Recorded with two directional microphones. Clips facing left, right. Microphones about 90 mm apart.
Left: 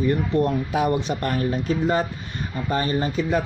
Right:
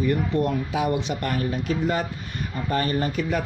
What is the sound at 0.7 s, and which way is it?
Speech, 45° left (ahead or behind).